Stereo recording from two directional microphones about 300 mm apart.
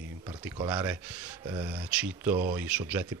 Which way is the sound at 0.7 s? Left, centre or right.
Centre.